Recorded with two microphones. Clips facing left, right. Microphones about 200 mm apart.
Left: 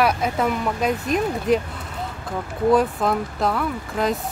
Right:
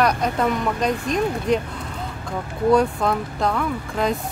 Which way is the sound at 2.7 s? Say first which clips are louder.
Right 1 dB; 5° left (ahead or behind).